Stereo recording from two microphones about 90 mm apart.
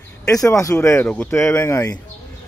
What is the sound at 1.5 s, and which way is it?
Speech, 30° left (ahead or behind).